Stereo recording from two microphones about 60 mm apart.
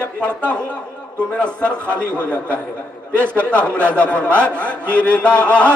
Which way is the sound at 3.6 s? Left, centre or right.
Left.